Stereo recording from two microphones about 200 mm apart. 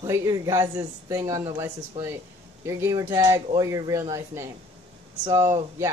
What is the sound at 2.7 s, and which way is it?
Speech, 15° right (ahead or behind).